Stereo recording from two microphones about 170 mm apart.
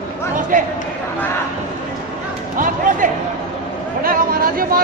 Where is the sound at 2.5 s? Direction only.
50° right (ahead or behind).